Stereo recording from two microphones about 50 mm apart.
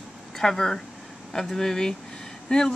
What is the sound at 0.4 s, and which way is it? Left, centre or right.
Speech, centre.